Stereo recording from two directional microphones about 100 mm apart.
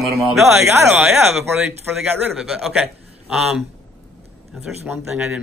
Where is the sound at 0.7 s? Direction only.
25° right (ahead or behind).